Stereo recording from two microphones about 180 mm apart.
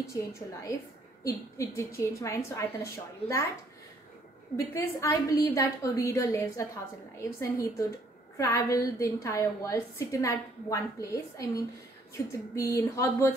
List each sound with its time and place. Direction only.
0.0 s a woman's voice: 15° left (ahead or behind)
4.6 s a woman's voice: 15° left (ahead or behind)